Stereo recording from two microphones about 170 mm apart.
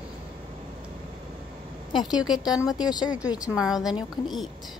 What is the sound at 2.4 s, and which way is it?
Speech, 5° right (ahead or behind).